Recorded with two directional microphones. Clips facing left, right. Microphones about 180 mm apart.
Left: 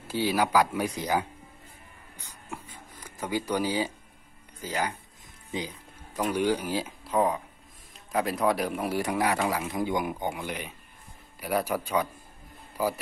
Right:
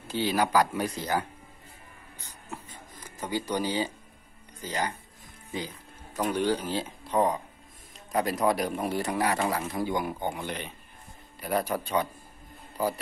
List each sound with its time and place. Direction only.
0.1 s speech: 10° left (ahead or behind)
2.1 s a sound: 10° left (ahead or behind)
4.6 s a man's voice: 10° left (ahead or behind)